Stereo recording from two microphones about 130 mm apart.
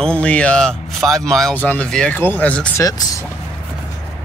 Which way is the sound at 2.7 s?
25° left (ahead or behind).